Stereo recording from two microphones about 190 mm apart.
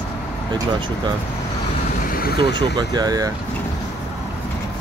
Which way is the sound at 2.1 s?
50° left (ahead or behind).